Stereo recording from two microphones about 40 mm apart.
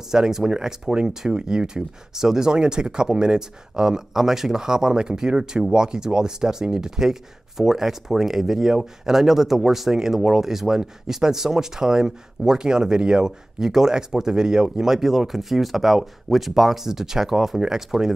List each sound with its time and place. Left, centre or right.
0.1 s speech: centre